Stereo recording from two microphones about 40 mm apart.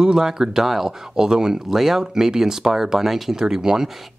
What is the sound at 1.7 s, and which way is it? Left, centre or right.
Speech, centre.